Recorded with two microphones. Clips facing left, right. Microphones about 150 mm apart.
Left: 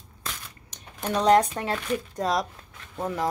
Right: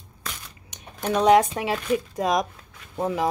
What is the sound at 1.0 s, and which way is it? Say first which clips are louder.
Speech: right 2 dB; 5° right (ahead or behind).